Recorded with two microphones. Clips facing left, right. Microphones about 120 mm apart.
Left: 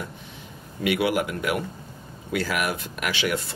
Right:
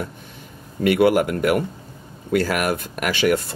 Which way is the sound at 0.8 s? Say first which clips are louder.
Right 7 dB; 45° right (ahead or behind).